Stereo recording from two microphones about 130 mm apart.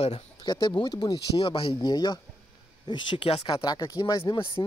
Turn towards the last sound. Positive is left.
turn(degrees=35)  # may be behind; listen again after turning